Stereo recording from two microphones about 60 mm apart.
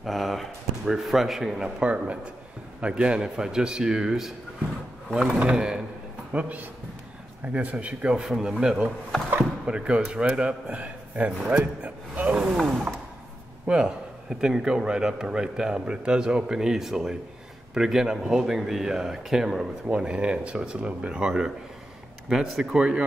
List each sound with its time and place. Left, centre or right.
0.0 s a sound: centre
1.8 s speech: centre
5.4 s a man's voice: centre
12.5 s a sound: centre
13.7 s speech: centre
19.9 s speech: centre